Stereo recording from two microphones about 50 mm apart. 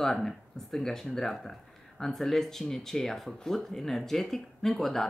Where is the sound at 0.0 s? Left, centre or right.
Centre.